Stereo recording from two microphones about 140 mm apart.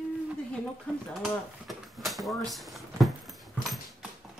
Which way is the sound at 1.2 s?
Centre (ahead or behind).